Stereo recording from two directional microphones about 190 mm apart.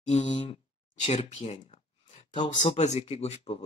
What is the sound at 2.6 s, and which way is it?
Speech, 35° left (ahead or behind).